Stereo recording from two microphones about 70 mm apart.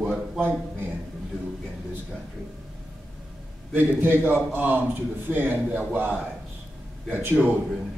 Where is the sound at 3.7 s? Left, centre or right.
Right.